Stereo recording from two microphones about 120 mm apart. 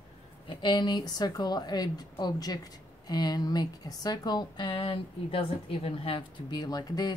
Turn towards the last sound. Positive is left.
turn(degrees=35)  # may be behind; listen again after turning